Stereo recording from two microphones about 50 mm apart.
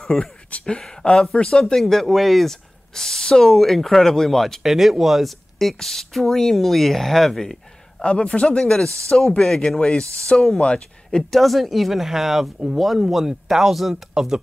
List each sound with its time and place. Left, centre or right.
0.0 s speech: centre
0.5 s speech: left
0.7 s speech: centre
1.8 s speech: centre
8.0 s a man's voice: centre
9.8 s speech: left; by 14.4 s centre